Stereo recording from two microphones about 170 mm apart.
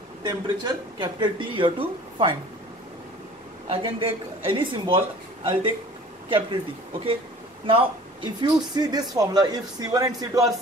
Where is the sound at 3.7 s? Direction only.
35° right (ahead or behind).